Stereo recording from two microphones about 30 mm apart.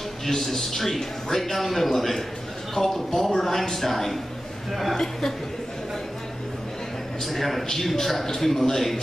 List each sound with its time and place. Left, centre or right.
0.3 s a man's voice: centre
7.2 s a man's voice: centre